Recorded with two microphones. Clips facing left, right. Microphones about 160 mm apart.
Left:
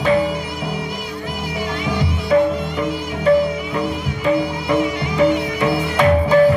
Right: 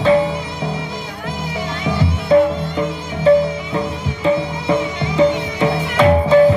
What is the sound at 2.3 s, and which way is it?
Music, 25° right (ahead or behind).